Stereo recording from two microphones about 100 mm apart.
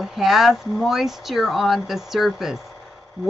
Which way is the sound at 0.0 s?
Centre (ahead or behind).